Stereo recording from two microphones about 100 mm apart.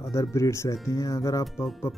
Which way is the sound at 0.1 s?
30° left (ahead or behind).